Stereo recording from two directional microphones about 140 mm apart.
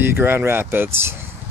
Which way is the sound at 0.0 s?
15° right (ahead or behind).